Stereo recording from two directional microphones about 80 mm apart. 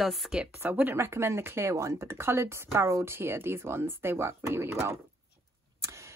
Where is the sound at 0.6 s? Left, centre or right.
Right.